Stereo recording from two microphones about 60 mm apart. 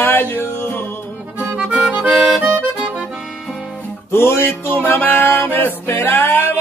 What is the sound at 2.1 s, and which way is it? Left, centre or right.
Accordion, centre.